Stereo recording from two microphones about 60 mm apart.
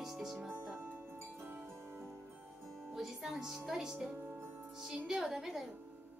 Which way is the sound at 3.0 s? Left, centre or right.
Centre.